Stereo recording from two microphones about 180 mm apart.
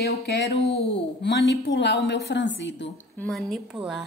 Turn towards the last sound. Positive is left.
turn(degrees=0)  # may be behind; listen again after turning